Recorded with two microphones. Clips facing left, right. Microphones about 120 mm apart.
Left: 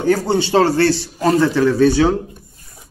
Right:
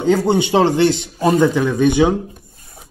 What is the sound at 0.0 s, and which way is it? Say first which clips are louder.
Speech: right 1 dB; 20° right (ahead or behind).